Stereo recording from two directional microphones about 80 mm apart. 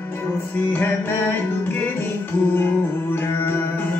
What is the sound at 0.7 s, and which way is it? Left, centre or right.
Music, left.